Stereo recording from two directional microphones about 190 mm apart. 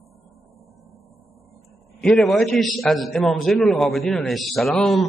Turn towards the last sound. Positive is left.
turn(degrees=0)  # may be behind; listen again after turning